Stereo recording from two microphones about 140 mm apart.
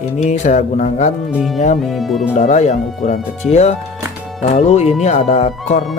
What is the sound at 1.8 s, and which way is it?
Music, centre (ahead or behind).